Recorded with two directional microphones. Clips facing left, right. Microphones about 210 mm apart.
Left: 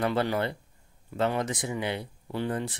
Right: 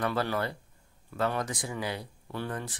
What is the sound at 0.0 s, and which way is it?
Speech, 25° left (ahead or behind).